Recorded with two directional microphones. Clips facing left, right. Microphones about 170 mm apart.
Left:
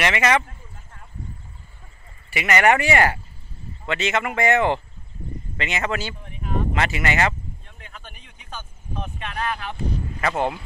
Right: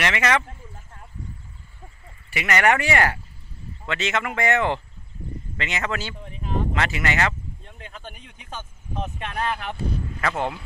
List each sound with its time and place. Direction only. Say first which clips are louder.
0.0 s speech: left 2 dB; 15° left (ahead or behind)
2.3 s speech: left 2 dB; 10° left (ahead or behind)
7.6 s a sound: right 4 dB; 25° right (ahead or behind)
8.5 s vehicle: right 2 dB; 20° right (ahead or behind)
10.2 s speech: left 3 dB; 20° left (ahead or behind)